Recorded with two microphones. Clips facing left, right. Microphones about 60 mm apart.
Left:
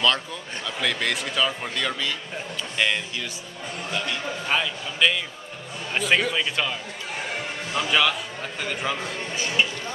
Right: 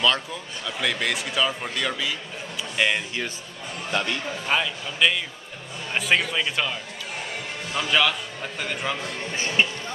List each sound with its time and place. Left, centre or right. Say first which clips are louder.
0.0 s speech: even; centre
4.5 s speech: right 1 dB; centre
9.3 s speech: right 1 dB; right